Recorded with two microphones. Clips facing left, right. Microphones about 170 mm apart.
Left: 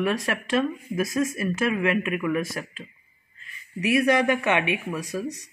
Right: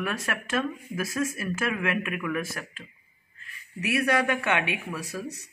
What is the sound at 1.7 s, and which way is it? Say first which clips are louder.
Speech: left 5 dB; 5° left (ahead or behind).